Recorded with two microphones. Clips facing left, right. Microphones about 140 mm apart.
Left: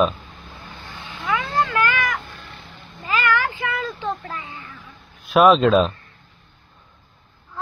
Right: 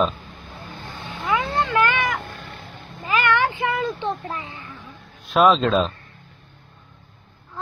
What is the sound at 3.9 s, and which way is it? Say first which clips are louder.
Speech: right 1 dB; 25° right (ahead or behind).